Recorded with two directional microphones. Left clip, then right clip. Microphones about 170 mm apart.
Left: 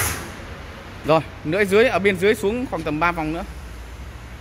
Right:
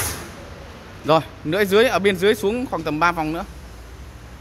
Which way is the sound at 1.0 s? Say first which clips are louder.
Right 1 dB; 10° right (ahead or behind).